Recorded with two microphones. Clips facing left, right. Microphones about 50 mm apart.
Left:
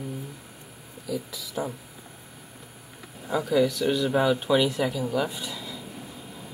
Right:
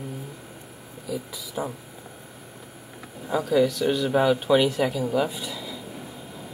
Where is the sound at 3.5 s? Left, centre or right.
Centre.